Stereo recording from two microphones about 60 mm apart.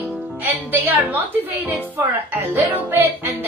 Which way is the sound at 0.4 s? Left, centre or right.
Right.